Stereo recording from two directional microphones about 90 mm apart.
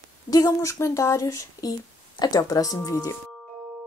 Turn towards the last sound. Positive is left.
turn(degrees=40)  # may be behind; listen again after turning